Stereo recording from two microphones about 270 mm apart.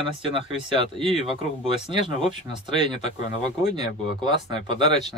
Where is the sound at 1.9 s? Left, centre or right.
Centre.